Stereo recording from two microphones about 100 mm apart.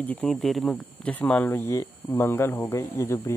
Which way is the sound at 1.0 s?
15° left (ahead or behind).